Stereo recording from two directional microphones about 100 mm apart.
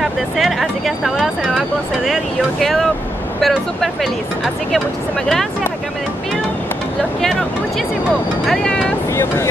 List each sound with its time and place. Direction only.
0.0 s speech: centre (ahead or behind)
2.6 s speech: centre (ahead or behind)
8.5 s speech: 10° left (ahead or behind)
9.1 s speech: 30° left (ahead or behind)